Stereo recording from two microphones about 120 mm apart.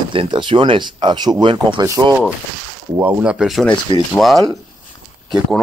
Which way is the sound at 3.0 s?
15° right (ahead or behind).